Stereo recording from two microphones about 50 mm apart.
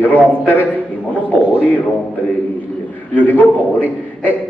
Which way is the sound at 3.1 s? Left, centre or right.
Left.